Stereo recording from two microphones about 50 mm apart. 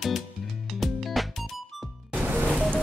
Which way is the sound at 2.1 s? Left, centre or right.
Right.